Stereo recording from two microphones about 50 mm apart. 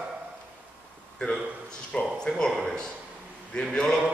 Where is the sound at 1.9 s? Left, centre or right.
Left.